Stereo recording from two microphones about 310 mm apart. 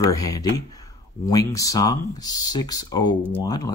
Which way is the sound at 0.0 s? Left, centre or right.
Centre.